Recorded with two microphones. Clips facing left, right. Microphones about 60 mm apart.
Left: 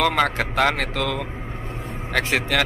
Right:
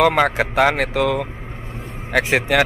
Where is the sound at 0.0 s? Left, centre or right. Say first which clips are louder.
Right 4 dB; centre.